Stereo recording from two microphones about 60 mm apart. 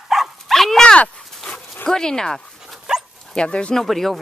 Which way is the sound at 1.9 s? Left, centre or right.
Centre.